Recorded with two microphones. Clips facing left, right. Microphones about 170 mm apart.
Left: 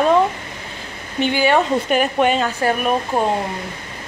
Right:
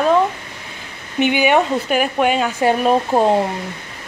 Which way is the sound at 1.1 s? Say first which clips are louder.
Right 2 dB; 15° right (ahead or behind).